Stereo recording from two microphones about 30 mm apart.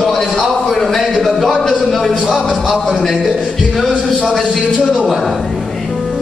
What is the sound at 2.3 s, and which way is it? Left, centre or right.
Speech, centre.